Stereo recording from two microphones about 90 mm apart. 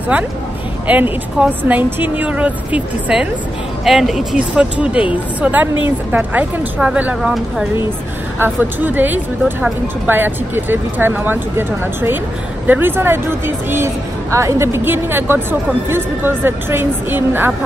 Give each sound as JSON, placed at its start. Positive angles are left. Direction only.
{"t": 0.1, "sound": "a woman's voice", "side_deg": -15}
{"t": 5.4, "sound": "a woman's voice", "side_deg": -20}
{"t": 8.4, "sound": "a woman's voice", "side_deg": -20}
{"t": 14.3, "sound": "a woman's voice", "side_deg": -35}